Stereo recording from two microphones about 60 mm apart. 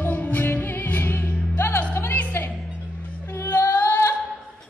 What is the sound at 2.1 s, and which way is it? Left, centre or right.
Music, left.